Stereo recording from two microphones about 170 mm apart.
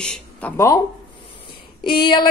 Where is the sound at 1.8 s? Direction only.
25° left (ahead or behind).